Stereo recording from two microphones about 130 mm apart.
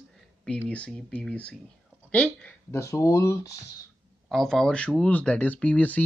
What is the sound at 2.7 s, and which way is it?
Speech, 25° left (ahead or behind).